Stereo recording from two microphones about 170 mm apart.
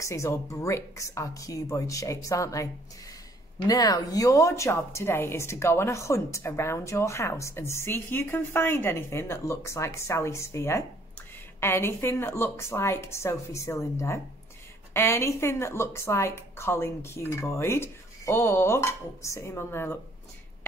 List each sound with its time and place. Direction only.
0.0 s a woman's voice: 15° left (ahead or behind)